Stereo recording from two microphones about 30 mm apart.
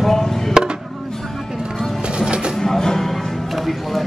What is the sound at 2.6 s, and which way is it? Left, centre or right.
Music, centre.